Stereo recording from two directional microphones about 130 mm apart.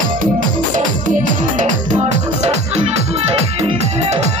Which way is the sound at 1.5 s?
70° right (ahead or behind).